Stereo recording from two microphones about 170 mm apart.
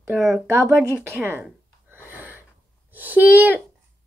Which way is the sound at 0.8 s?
15° right (ahead or behind).